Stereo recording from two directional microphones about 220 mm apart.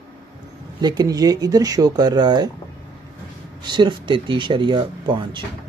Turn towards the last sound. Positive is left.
turn(degrees=-20)  # may be behind; listen again after turning